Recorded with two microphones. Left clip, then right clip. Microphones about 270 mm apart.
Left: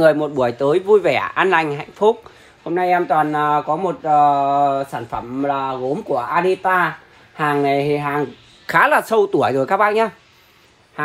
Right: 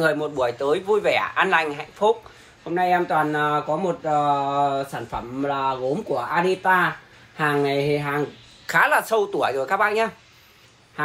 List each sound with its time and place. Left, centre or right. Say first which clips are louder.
0.0 s speech: left 7 dB; left
8.6 s speech: left 4 dB; left